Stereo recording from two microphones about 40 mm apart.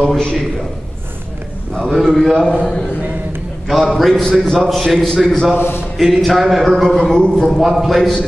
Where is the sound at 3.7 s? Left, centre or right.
Centre.